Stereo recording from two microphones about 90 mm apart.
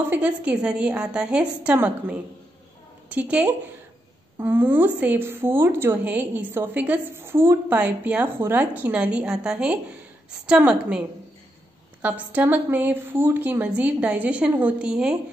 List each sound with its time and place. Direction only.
0.1 s a woman's voice: 15° right (ahead or behind)
4.4 s a woman's voice: 25° right (ahead or behind)
7.8 s a woman's voice: 15° right (ahead or behind)